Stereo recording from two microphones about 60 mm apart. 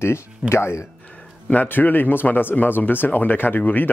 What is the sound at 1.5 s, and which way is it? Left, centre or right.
Speech, left.